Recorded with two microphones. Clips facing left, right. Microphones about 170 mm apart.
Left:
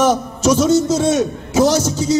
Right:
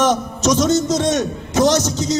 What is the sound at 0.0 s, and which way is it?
A man's voice, 10° left (ahead or behind).